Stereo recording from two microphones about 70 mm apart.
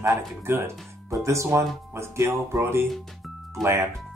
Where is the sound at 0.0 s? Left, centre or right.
Right.